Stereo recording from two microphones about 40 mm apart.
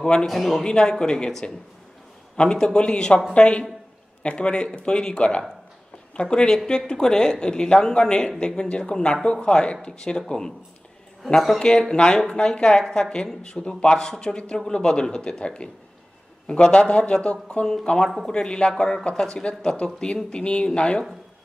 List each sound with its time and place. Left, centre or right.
0.0 s speech: left
0.3 s a man's voice: centre
0.7 s speech: centre
11.3 s a man's voice: centre
11.6 s speech: centre